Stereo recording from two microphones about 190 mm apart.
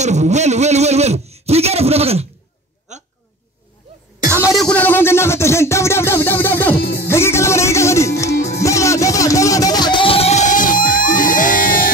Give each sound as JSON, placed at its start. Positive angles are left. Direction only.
{"t": 0.0, "sound": "a man's voice", "side_deg": -35}
{"t": 2.9, "sound": "hiccup", "side_deg": -40}
{"t": 4.5, "sound": "music", "side_deg": 5}
{"t": 6.8, "sound": "music", "side_deg": 55}
{"t": 7.1, "sound": "music", "side_deg": 15}